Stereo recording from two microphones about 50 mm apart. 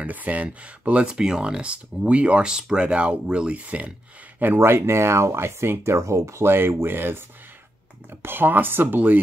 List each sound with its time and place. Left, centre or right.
0.0 s speech: right
1.0 s speech: centre
4.6 s speech: right
6.4 s speech: right